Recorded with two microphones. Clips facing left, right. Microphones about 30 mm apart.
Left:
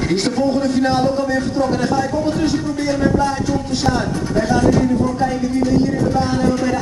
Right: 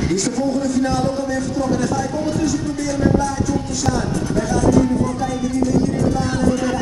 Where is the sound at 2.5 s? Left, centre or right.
Left.